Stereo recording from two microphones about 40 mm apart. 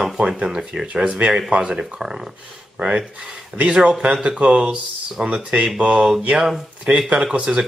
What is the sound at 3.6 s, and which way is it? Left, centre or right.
Speech, right.